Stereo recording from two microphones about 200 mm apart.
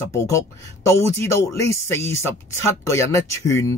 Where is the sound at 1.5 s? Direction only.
15° left (ahead or behind).